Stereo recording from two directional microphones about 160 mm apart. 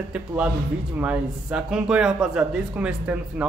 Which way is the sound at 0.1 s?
5° right (ahead or behind).